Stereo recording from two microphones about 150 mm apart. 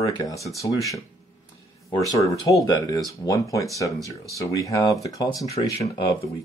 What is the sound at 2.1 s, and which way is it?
Speech, 20° left (ahead or behind).